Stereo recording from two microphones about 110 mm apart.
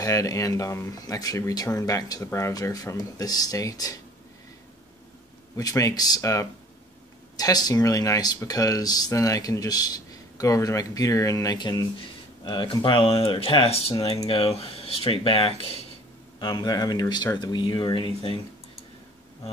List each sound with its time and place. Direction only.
0.0 s speech: 30° left (ahead or behind)
5.6 s speech: 35° left (ahead or behind); by 15.8 s 60° left (ahead or behind)
16.3 s speech: 45° left (ahead or behind)